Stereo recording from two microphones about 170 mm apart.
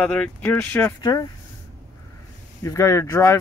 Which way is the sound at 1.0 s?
25° left (ahead or behind).